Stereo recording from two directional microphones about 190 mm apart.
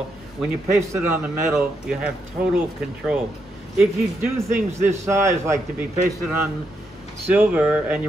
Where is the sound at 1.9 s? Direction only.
5° right (ahead or behind).